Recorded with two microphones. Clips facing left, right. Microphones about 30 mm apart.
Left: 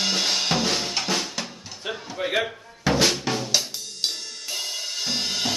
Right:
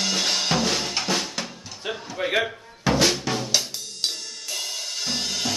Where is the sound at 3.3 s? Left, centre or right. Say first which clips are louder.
Even; centre.